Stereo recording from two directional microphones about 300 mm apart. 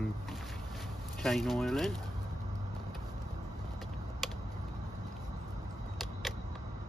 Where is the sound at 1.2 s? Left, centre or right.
Centre.